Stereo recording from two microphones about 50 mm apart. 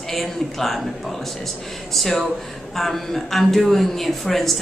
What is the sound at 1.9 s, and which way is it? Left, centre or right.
A man's voice, centre.